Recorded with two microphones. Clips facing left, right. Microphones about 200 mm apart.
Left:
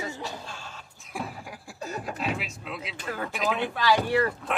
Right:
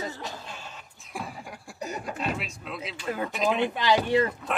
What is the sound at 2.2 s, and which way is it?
Speech, centre (ahead or behind).